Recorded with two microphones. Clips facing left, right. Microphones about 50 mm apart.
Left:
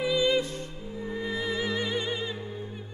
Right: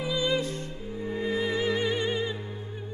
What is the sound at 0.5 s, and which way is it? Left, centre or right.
Music, right.